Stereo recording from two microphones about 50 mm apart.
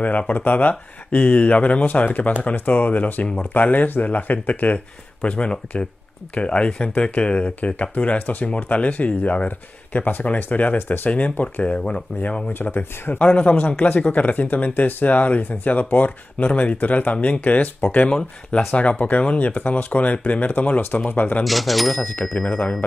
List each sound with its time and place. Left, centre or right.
0.3 s speech: left
12.5 s speech: left
13.2 s speech: left
21.5 s speech: centre
22.2 s speech: centre